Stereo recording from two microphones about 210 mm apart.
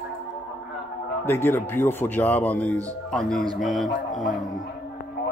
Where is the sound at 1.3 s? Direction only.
10° left (ahead or behind).